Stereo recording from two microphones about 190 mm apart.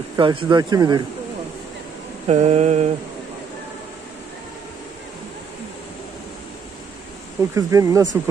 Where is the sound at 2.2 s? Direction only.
35° right (ahead or behind).